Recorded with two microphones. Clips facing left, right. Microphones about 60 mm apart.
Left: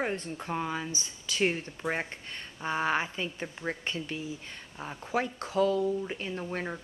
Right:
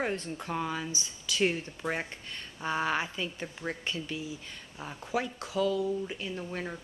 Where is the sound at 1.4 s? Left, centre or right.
Centre.